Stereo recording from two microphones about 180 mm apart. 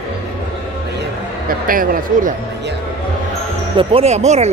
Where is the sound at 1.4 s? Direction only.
50° right (ahead or behind).